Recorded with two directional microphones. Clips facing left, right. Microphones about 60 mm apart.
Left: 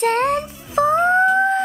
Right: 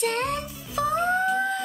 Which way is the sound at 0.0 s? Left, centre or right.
Left.